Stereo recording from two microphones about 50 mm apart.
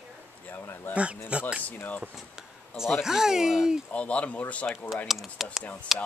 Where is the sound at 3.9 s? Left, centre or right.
Left.